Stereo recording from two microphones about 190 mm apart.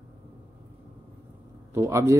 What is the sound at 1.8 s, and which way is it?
Speech, 15° right (ahead or behind).